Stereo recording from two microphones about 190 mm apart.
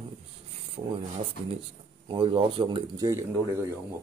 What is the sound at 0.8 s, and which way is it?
Speech, 25° right (ahead or behind).